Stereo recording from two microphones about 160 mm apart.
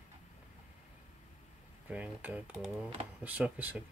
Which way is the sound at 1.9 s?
10° right (ahead or behind).